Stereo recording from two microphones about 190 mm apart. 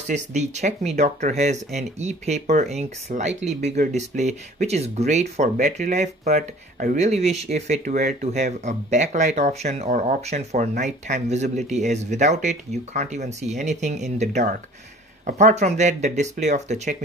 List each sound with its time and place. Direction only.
0.0 s speech: 40° right (ahead or behind)